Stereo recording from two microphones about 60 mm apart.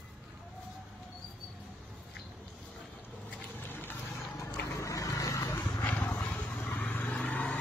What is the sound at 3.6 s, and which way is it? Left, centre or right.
Vehicle, left.